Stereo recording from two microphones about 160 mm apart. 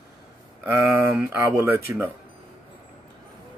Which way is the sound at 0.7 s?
15° right (ahead or behind).